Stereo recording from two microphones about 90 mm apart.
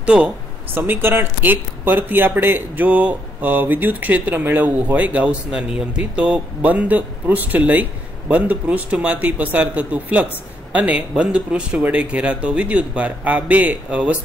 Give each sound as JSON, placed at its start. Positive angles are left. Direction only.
{"t": 0.0, "sound": "speech", "side_deg": -15}
{"t": 0.7, "sound": "speech", "side_deg": -25}